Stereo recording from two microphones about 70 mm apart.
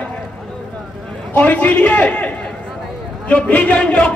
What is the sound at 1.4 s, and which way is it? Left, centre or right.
A man's voice, left.